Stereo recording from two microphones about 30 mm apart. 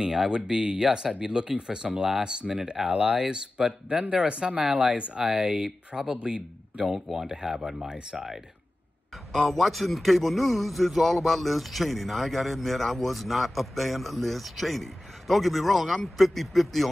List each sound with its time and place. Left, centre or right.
0.0 s speech: right
4.1 s speech: right
5.1 s speech: right
6.2 s speech: right
6.9 s speech: centre
7.9 s speech: right
9.3 s a man's voice: centre